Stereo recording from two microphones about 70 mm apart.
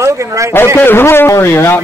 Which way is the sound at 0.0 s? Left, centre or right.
Right.